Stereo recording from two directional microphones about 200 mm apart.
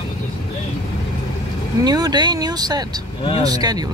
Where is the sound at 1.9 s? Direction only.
20° right (ahead or behind).